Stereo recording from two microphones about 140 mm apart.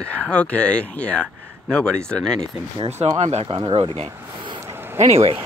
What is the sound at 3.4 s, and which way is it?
Speech, 35° right (ahead or behind).